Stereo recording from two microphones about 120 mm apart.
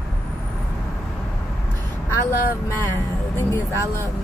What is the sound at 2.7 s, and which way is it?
Speech, 20° left (ahead or behind).